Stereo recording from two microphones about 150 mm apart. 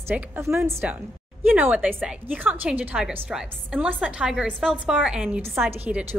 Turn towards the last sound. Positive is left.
turn(degrees=-10)  # may be behind; listen again after turning